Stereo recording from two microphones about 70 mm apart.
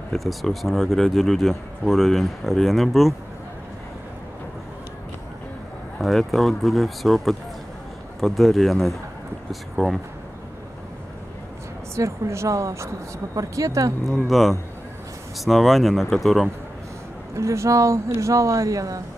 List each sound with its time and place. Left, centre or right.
0.1 s speech: centre
5.9 s speech: centre
11.9 s speech: right
14.0 s speech: centre
17.4 s speech: right